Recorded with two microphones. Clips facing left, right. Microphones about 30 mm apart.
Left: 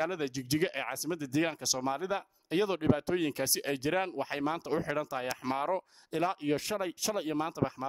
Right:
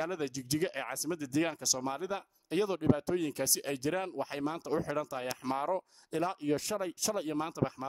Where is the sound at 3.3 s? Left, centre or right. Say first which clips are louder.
Left 2 dB; left.